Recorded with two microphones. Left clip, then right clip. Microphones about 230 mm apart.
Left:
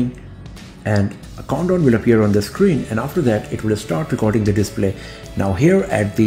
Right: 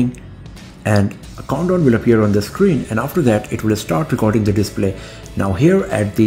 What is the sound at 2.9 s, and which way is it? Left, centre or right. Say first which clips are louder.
Speech: right 2 dB; centre.